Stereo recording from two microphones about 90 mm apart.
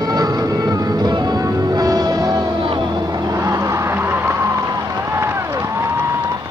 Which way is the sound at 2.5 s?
65° right (ahead or behind).